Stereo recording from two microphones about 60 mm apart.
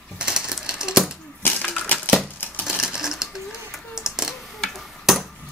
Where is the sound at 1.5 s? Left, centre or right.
Left.